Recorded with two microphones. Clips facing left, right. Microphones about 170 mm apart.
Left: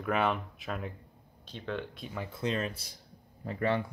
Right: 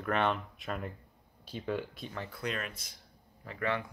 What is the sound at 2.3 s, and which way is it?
Speech, 25° left (ahead or behind).